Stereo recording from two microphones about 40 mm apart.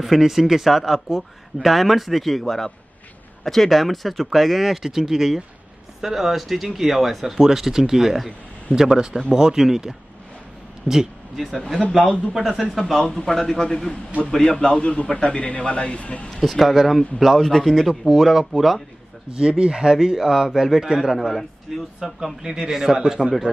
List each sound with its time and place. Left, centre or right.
0.0 s speech: centre
12.0 s a man's voice: left
12.4 s speech: centre
13.0 s a man's voice: centre; by 16.3 s left
16.3 s speech: centre
19.3 s speech: right
23.2 s a man's voice: centre